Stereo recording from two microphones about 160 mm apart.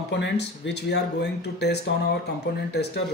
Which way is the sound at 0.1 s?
90° left.